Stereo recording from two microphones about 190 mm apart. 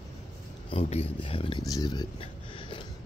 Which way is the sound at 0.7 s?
30° left (ahead or behind).